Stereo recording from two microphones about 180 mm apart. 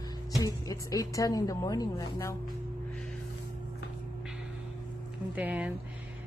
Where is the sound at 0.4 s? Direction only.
20° left (ahead or behind).